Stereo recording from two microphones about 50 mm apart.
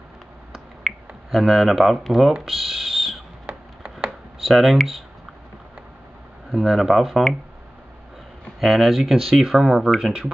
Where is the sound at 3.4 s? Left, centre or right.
Right.